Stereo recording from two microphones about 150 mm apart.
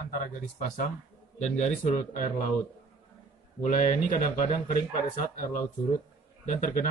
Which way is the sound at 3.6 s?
60° left (ahead or behind).